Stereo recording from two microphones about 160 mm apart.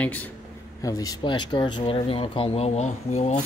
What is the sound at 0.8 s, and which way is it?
A man's voice, 20° left (ahead or behind).